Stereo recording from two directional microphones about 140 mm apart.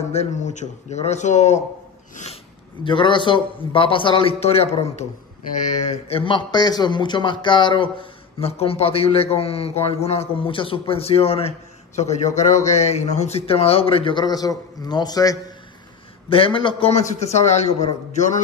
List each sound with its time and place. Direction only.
0.1 s speech: 55° left (ahead or behind)
2.8 s a man's voice: 35° left (ahead or behind); by 6.1 s 60° left (ahead or behind)
6.1 s a man's voice: 35° left (ahead or behind)
16.3 s a man's voice: 40° left (ahead or behind)
16.9 s speech: 55° left (ahead or behind)